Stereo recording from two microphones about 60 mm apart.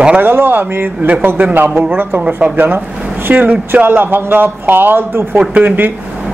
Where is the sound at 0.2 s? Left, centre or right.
Right.